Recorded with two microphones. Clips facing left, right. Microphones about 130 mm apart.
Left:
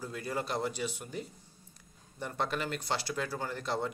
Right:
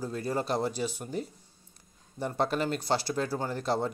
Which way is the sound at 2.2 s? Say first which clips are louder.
Right 6 dB; 35° right (ahead or behind).